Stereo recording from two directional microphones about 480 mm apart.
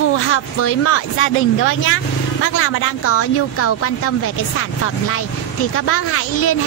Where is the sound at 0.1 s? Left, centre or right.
Left.